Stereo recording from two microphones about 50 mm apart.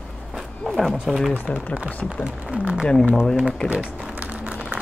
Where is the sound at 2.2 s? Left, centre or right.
Right.